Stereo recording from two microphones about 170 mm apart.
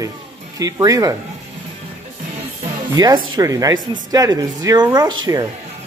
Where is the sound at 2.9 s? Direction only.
25° right (ahead or behind).